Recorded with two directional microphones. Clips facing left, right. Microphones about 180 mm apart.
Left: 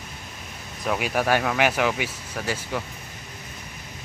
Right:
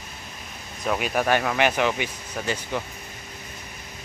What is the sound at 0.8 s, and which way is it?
Speech, 10° left (ahead or behind).